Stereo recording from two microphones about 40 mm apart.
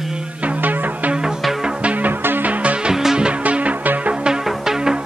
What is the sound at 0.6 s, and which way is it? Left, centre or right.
Music, right.